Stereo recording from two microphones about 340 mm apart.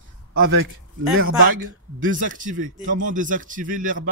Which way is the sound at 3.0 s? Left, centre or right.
Right.